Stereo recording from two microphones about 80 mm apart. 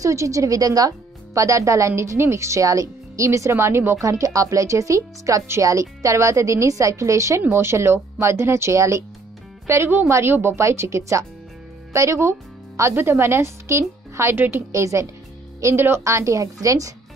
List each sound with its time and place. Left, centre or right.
0.0 s a woman's voice: right
14.7 s speech: right
15.6 s a woman's voice: right